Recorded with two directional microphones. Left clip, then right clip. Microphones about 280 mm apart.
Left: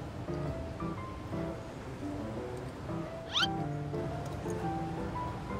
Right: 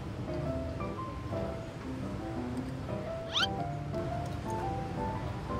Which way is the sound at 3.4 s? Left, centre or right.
Centre.